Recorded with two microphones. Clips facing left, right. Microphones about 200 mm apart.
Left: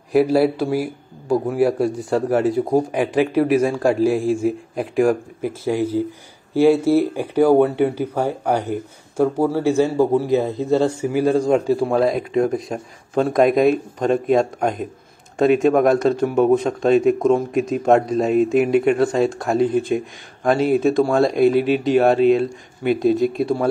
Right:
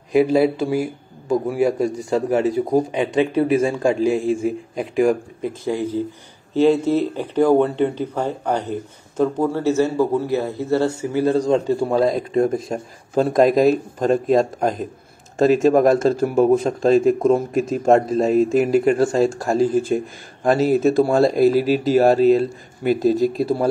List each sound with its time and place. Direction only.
0.1 s speech: centre (ahead or behind)